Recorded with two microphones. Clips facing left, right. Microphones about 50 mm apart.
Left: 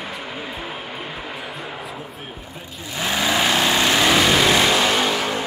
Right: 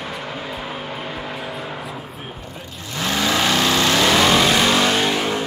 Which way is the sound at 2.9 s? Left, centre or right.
Centre.